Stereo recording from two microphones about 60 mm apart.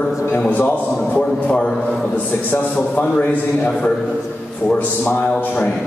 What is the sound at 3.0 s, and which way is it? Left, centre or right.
Speech, left.